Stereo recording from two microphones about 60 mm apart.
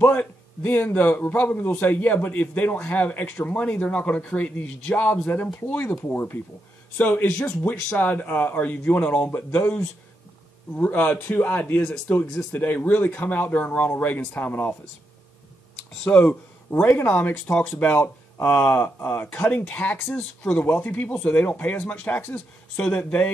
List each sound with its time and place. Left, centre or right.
0.0 s a man's voice: left
10.8 s a man's voice: left
16.0 s speech: centre
16.9 s a man's voice: left
17.9 s a man's voice: left
22.8 s a man's voice: left